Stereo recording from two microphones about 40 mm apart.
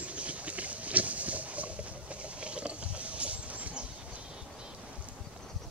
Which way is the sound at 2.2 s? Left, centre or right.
Right.